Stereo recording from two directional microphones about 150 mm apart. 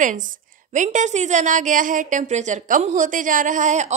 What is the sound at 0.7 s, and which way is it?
A woman's voice, 55° right (ahead or behind).